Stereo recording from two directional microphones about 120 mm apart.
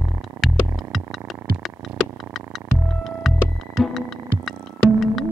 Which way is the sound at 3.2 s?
Centre (ahead or behind).